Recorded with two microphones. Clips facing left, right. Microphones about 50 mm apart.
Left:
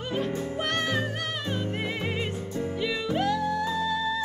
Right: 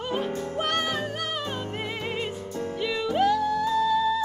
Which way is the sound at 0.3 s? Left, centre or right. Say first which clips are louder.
Even; centre.